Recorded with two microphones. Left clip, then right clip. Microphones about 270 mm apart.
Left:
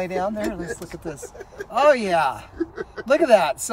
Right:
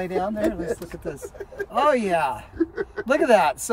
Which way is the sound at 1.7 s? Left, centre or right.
Centre.